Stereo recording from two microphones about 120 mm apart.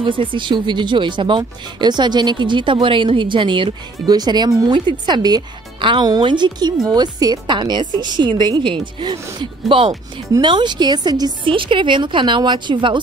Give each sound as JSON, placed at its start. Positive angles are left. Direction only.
{"t": 0.0, "sound": "speech", "side_deg": -45}